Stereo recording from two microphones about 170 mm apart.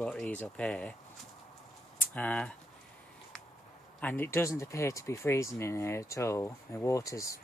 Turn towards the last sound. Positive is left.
turn(degrees=20)  # may be behind; listen again after turning